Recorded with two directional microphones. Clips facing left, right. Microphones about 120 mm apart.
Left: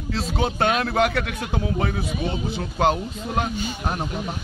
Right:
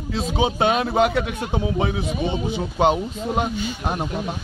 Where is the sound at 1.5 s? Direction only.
15° right (ahead or behind).